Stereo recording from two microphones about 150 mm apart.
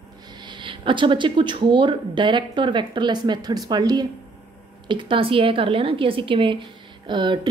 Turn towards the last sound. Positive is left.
turn(degrees=-30)  # may be behind; listen again after turning